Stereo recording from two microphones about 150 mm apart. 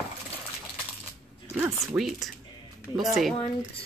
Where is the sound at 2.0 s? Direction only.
5° right (ahead or behind).